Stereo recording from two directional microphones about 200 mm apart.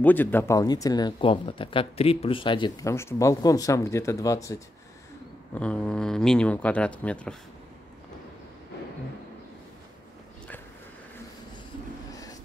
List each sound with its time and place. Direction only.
0.0 s speech: 10° left (ahead or behind)